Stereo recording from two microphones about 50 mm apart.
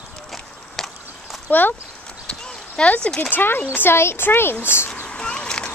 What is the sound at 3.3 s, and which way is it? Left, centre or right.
Speech, left.